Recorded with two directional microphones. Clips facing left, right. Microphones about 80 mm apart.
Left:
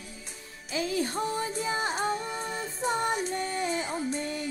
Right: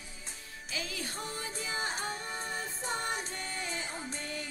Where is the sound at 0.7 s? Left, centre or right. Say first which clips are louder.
Left 11 dB; left.